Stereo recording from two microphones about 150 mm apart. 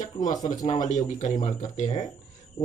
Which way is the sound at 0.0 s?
55° left (ahead or behind).